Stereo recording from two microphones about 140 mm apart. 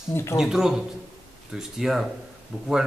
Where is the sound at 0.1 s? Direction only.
20° left (ahead or behind).